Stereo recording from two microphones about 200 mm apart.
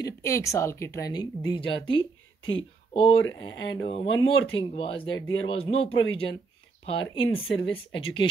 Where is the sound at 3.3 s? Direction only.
20° left (ahead or behind).